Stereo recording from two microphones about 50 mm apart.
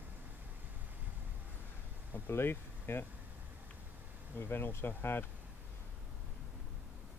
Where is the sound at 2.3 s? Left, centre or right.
Left.